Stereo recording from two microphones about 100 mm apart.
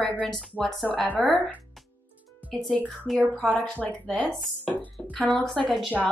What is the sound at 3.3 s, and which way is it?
Speech, 15° left (ahead or behind).